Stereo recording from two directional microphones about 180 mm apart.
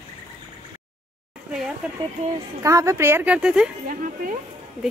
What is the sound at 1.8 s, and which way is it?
Speech, 5° right (ahead or behind).